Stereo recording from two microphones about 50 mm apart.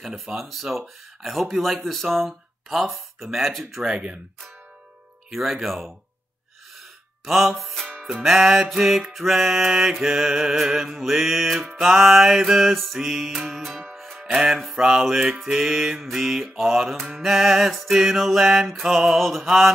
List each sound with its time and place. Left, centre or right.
0.0 s mantra: centre
3.8 s speech: centre
5.3 s mantra: centre
7.2 s mantra: centre
13.9 s music: centre
14.2 s music: centre
15.4 s mantra: centre